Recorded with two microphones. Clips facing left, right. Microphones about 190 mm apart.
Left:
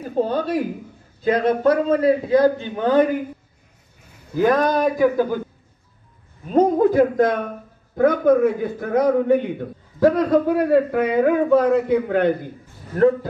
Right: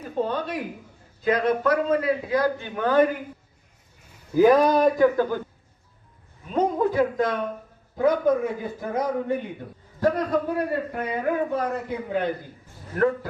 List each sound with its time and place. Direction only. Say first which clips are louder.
0.1 s a man's voice: left 6 dB; 35° left (ahead or behind); by 3.1 s 20° left (ahead or behind)
4.4 s speech: right 1 dB; 5° right (ahead or behind); by 5.4 s 10° left (ahead or behind)
6.4 s a man's voice: left 7 dB; 40° left (ahead or behind)
7.9 s a man's voice: left 5 dB; 60° left (ahead or behind)
12.9 s a man's voice: left 6 dB; 25° left (ahead or behind)